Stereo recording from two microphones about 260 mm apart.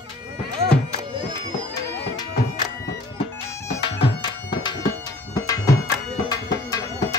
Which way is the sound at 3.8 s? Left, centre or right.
Centre.